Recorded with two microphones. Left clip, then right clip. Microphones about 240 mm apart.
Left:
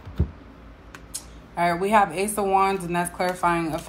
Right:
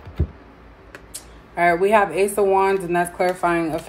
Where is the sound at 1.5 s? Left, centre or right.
Left.